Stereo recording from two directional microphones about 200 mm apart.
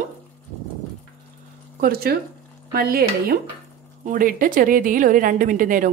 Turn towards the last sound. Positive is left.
turn(degrees=-40)  # may be behind; listen again after turning